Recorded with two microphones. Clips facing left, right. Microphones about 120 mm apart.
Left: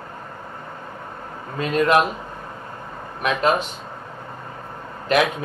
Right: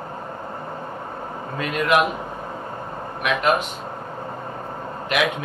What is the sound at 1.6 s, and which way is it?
Speech, 30° left (ahead or behind).